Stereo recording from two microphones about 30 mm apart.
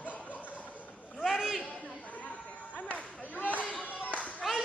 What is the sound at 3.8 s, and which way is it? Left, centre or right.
Clapping, left.